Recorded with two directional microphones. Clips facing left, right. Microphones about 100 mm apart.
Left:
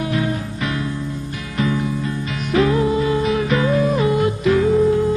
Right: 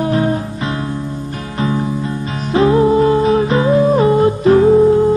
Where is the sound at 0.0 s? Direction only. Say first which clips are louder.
Right 6 dB; 35° right (ahead or behind).